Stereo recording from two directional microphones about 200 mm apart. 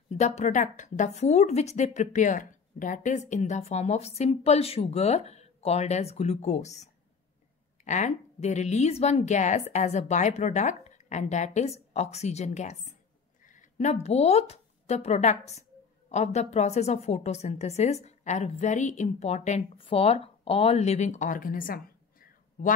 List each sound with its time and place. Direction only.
0.1 s speech: 35° left (ahead or behind)